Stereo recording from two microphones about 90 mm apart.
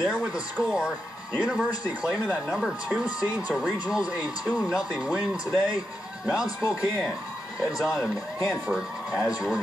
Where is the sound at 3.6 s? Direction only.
10° right (ahead or behind).